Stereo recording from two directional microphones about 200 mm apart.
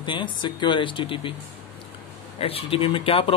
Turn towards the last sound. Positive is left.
turn(degrees=25)  # may be behind; listen again after turning